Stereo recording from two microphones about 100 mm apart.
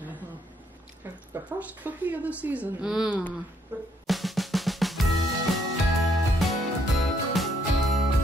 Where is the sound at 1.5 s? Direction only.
15° right (ahead or behind).